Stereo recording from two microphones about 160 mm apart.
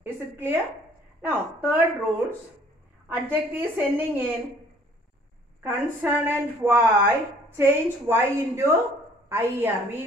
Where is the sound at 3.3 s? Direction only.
10° right (ahead or behind).